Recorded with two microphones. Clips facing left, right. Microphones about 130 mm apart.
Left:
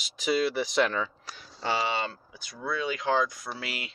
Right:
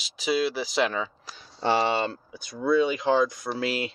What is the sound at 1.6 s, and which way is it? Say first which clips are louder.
Speech: right 5 dB; 35° right (ahead or behind).